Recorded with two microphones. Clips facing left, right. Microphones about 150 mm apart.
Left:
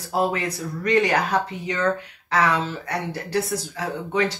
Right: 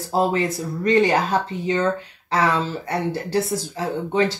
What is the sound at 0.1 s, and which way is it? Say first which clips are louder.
Speech: right 3 dB; 30° right (ahead or behind).